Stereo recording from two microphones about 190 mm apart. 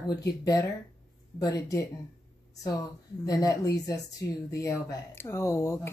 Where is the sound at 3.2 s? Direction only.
20° left (ahead or behind).